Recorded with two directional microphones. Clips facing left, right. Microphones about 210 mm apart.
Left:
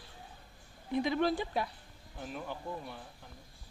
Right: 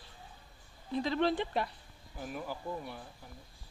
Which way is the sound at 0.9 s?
15° left (ahead or behind).